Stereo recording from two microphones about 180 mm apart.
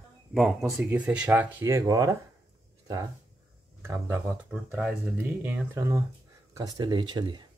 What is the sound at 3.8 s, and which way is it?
Speech, 15° right (ahead or behind).